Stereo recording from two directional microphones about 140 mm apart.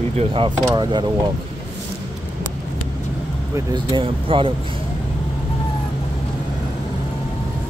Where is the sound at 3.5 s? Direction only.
30° right (ahead or behind).